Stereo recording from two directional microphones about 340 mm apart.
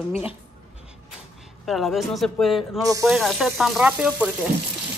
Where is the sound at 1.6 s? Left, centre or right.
Centre.